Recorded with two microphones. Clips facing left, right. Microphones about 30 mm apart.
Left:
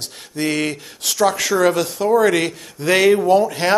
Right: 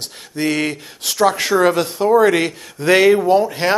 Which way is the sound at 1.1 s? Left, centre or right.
Right.